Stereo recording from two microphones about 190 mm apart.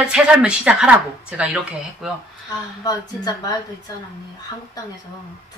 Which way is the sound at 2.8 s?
20° left (ahead or behind).